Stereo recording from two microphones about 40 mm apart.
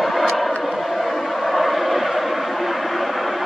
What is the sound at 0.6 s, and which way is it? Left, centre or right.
Chant, centre.